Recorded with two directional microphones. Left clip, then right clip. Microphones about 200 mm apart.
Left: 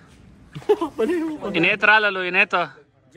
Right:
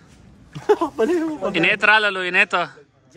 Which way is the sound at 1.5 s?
Centre (ahead or behind).